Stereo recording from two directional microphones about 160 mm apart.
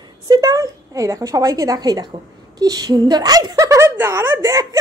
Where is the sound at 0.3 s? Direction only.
20° right (ahead or behind).